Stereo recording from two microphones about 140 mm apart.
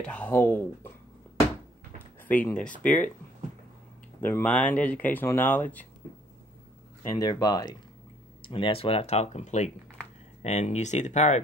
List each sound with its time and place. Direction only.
0.0 s speech: 10° left (ahead or behind)
2.2 s speech: 10° left (ahead or behind)
4.2 s speech: 15° left (ahead or behind)
7.2 s speech: 30° left (ahead or behind); by 11.4 s 55° left (ahead or behind)